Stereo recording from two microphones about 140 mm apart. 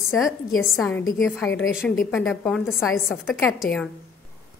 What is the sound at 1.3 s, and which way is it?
A woman's voice, 15° left (ahead or behind).